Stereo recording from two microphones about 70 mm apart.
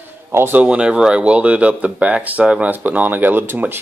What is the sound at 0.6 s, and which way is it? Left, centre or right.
Speech, centre.